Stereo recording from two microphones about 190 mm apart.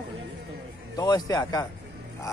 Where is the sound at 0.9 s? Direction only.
20° left (ahead or behind).